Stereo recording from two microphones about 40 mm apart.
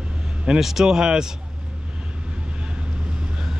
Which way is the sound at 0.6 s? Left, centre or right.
Centre.